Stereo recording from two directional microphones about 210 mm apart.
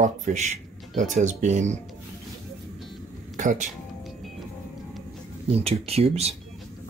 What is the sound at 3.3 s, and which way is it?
Speech, 35° right (ahead or behind).